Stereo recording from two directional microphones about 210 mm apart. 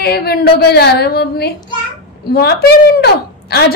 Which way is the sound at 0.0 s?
50° left (ahead or behind).